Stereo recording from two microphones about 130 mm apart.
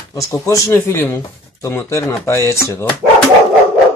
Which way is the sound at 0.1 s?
25° left (ahead or behind).